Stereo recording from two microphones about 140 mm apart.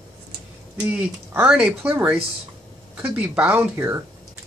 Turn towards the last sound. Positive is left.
turn(degrees=-15)  # may be behind; listen again after turning